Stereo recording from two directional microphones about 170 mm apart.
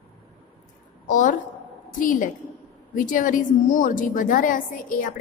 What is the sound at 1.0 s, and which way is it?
A woman's voice, 50° left (ahead or behind).